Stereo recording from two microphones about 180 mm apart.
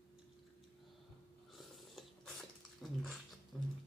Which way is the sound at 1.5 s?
Centre (ahead or behind).